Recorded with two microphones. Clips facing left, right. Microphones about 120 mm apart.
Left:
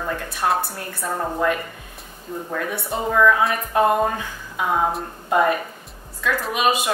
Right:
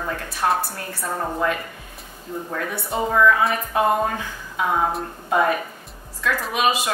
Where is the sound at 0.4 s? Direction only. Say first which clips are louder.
Even; 5° left (ahead or behind).